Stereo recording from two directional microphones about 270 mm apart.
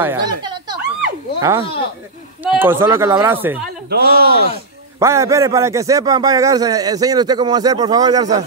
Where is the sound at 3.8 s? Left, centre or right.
Right.